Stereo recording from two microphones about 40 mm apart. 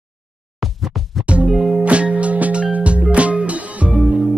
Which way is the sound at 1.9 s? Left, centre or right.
Right.